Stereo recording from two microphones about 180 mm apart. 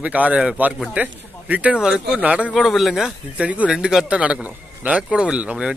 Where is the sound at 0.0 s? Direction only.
10° right (ahead or behind).